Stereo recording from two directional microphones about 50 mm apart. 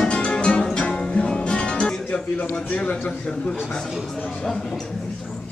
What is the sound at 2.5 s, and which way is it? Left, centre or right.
Speech, left.